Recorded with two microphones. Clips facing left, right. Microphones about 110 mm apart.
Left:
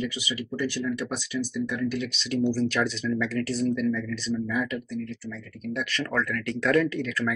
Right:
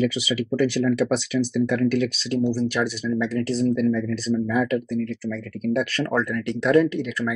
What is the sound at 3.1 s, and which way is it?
Speech, 25° right (ahead or behind).